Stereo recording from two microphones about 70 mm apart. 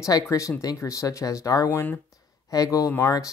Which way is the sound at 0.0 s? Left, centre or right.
Left.